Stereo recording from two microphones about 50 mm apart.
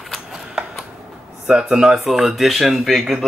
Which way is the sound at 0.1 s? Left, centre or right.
Centre.